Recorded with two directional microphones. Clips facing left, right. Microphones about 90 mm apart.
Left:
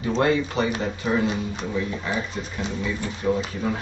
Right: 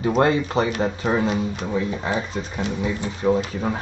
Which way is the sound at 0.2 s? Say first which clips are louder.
Right 1 dB; 35° right (ahead or behind).